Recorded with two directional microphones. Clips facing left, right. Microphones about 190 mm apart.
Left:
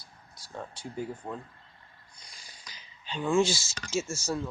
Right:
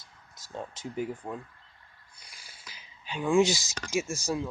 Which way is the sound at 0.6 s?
20° right (ahead or behind).